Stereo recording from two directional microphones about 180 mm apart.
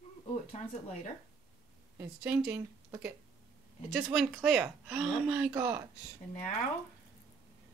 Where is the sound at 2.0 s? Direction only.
10° right (ahead or behind).